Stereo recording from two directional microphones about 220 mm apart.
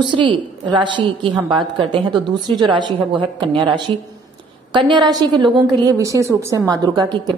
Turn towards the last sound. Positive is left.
turn(degrees=-20)  # may be behind; listen again after turning